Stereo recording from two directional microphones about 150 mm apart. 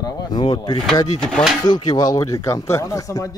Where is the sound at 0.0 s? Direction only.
25° left (ahead or behind).